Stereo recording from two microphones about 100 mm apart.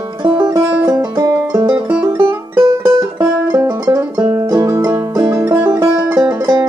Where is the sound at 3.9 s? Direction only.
40° right (ahead or behind).